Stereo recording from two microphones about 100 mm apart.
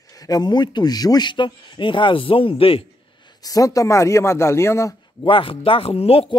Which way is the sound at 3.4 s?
35° left (ahead or behind).